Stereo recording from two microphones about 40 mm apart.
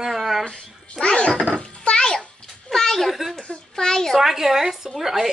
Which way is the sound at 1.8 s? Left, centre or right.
Centre.